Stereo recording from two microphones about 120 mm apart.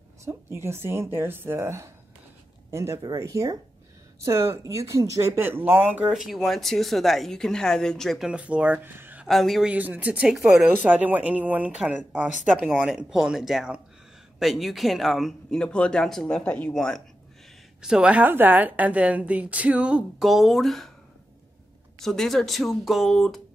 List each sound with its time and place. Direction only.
0.2 s speech: 20° right (ahead or behind)
6.0 s speech: centre (ahead or behind)
8.3 s speech: 10° right (ahead or behind)
9.3 s speech: centre (ahead or behind)
9.7 s a woman's voice: 10° right (ahead or behind)
10.7 s a woman's voice: 15° right (ahead or behind); by 17.0 s 5° left (ahead or behind)
17.8 s a woman's voice: 10° right (ahead or behind)
22.0 s speech: 5° left (ahead or behind)